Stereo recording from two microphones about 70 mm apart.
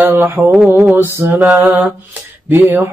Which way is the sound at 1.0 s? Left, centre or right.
Right.